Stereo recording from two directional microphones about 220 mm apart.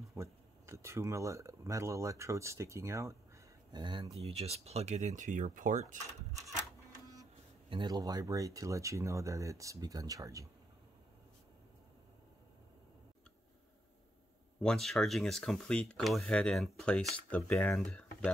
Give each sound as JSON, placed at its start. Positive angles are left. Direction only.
{"t": 0.1, "sound": "speech", "side_deg": -15}
{"t": 7.7, "sound": "speech", "side_deg": -20}
{"t": 14.6, "sound": "speech", "side_deg": 0}